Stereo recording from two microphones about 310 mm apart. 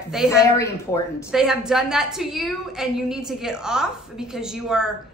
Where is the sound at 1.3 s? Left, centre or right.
Centre.